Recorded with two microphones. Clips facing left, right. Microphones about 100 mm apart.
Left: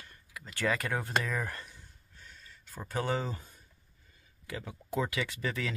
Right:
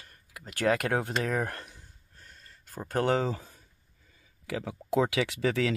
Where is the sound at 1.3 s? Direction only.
60° right (ahead or behind).